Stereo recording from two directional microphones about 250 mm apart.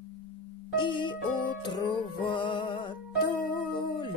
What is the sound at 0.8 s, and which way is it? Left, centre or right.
Music, centre.